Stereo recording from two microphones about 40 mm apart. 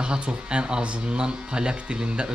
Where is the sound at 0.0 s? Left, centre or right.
Right.